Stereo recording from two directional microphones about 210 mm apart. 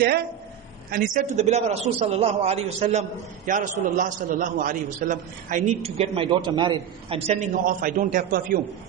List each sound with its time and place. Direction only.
0.8 s a man's voice: 40° right (ahead or behind)